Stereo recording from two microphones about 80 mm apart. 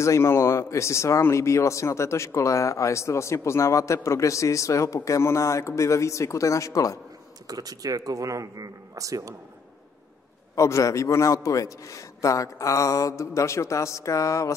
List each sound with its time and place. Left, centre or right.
0.0 s speech: left
7.4 s speech: right
10.5 s speech: left